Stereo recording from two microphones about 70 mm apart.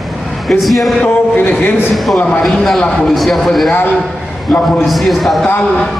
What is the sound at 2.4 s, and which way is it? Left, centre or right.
Speech, centre.